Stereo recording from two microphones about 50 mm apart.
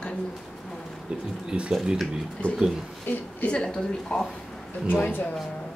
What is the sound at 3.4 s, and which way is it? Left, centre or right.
Speech, centre.